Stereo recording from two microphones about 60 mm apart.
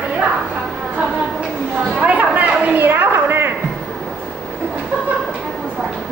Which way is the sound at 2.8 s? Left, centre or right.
Right.